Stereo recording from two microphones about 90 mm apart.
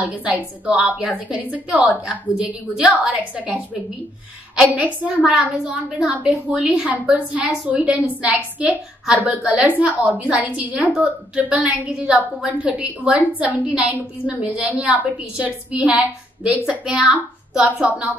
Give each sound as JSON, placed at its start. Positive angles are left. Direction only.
{"t": 0.0, "sound": "a woman's voice", "side_deg": -15}
{"t": 4.7, "sound": "a woman's voice", "side_deg": -15}